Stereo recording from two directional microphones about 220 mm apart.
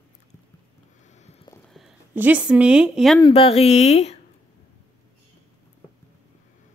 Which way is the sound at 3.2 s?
25° left (ahead or behind).